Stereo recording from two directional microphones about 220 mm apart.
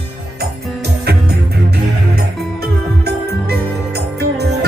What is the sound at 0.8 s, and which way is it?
Music, 45° right (ahead or behind).